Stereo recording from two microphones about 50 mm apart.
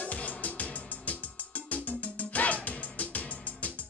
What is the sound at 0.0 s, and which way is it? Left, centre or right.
Music, left.